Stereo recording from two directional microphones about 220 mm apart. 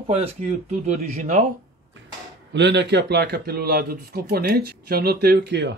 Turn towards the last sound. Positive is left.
turn(degrees=-50)  # may be behind; listen again after turning